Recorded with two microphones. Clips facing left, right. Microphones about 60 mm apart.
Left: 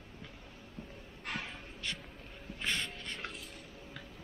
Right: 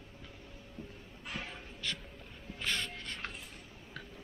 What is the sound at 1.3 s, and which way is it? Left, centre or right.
Music, left.